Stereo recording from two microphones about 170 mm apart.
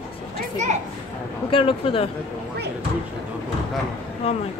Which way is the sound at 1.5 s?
35° left (ahead or behind).